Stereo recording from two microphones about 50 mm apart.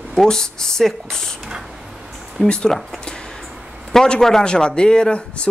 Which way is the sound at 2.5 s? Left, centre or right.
Centre.